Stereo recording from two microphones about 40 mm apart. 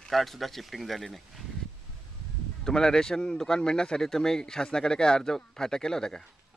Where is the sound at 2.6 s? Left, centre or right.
Centre.